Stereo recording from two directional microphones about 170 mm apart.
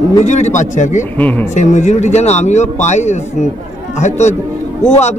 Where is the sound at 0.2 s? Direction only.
40° left (ahead or behind).